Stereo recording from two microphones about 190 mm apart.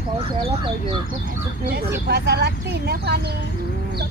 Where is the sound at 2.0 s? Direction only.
60° right (ahead or behind).